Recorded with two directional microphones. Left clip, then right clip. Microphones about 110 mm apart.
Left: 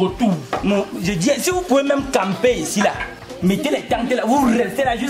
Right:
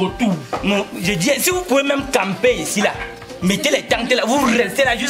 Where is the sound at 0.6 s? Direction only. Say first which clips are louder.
Right 2 dB; 10° right (ahead or behind).